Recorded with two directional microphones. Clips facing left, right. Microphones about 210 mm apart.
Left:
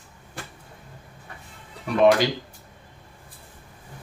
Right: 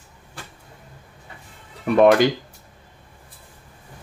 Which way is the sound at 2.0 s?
55° right (ahead or behind).